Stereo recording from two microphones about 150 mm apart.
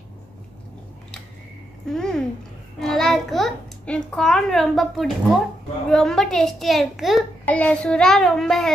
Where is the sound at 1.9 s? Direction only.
5° left (ahead or behind).